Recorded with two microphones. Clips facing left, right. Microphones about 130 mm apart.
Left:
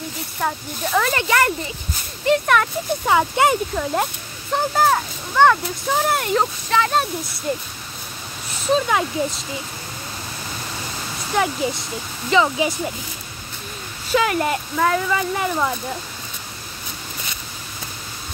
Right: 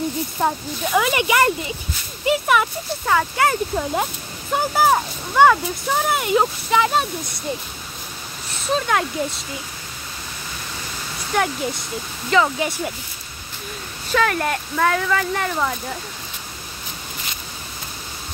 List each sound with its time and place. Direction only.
0.4 s speech: 25° right (ahead or behind)
0.9 s speech: 10° right (ahead or behind)
3.1 s speech: 15° left (ahead or behind)
3.7 s speech: 5° right (ahead or behind)
8.6 s speech: centre (ahead or behind)
11.3 s speech: 5° left (ahead or behind)
14.1 s speech: 10° left (ahead or behind)